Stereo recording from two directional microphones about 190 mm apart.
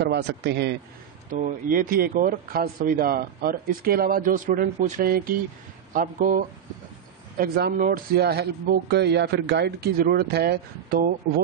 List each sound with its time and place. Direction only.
0.1 s speech: 60° right (ahead or behind)
1.3 s speech: 45° right (ahead or behind)